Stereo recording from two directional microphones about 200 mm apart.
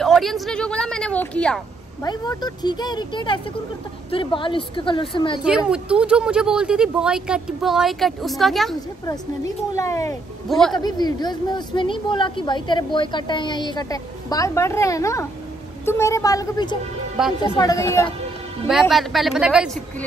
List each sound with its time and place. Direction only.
0.0 s a woman's voice: centre (ahead or behind)
2.0 s a woman's voice: 20° left (ahead or behind)
5.7 s speech: 5° right (ahead or behind)
9.0 s a woman's voice: 15° left (ahead or behind)
18.7 s speech: centre (ahead or behind)